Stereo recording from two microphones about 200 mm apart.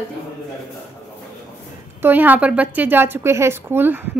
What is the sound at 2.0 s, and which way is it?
A woman's voice, 10° right (ahead or behind).